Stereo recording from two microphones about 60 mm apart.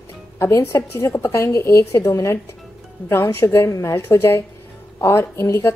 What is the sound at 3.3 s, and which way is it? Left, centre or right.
Speech, left.